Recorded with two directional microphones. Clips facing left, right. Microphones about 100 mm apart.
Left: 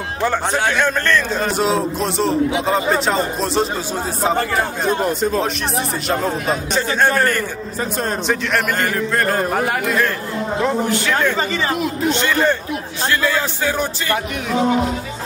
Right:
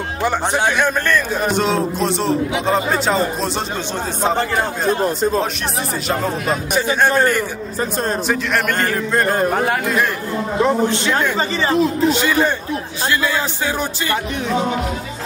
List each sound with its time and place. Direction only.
0.2 s a man's voice: 15° right (ahead or behind)
1.5 s speech: centre (ahead or behind)
5.0 s a man's voice: 35° right (ahead or behind)
6.7 s a man's voice: 15° right (ahead or behind)
8.3 s speech: centre (ahead or behind)
9.1 s a man's voice: 25° right (ahead or behind)
12.1 s a man's voice: 5° right (ahead or behind)